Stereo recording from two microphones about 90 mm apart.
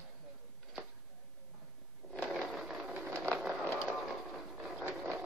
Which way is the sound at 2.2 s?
5° right (ahead or behind).